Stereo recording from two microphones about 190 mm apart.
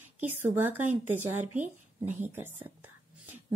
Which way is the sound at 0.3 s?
10° right (ahead or behind).